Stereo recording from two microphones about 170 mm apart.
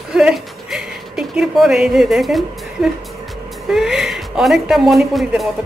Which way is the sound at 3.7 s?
Centre (ahead or behind).